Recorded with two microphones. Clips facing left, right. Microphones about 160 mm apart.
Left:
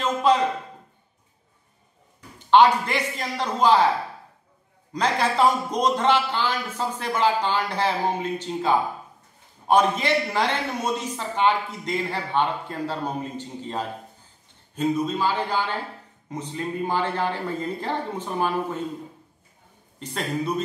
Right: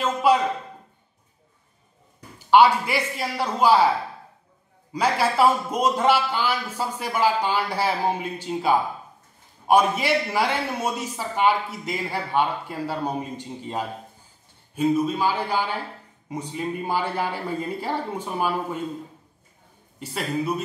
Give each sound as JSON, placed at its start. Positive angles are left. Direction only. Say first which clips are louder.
{"t": 0.0, "sound": "a sound", "louder": "right 1 dB", "side_deg": -10}
{"t": 2.3, "sound": "a man's voice", "louder": "even", "side_deg": -10}
{"t": 4.9, "sound": "a man's voice", "louder": "right 1 dB", "side_deg": -10}
{"t": 20.0, "sound": "a man's voice", "louder": "right 1 dB", "side_deg": -10}